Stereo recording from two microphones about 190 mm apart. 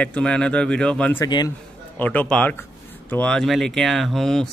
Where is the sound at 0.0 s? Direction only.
5° left (ahead or behind).